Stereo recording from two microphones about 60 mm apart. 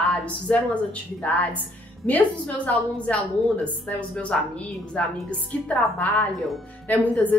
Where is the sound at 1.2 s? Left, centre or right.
Left.